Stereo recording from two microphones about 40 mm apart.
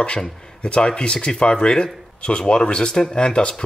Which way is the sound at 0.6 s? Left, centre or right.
Left.